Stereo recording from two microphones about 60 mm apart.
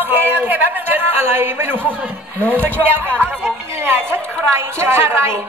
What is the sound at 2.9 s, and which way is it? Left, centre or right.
A man's voice, right.